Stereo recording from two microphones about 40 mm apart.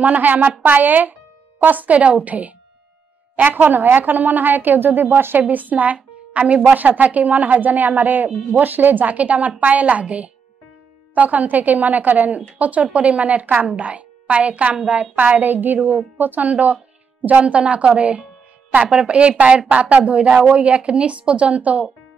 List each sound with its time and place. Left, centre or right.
0.0 s a woman's voice: right
3.3 s speech: right
5.4 s a woman's voice: right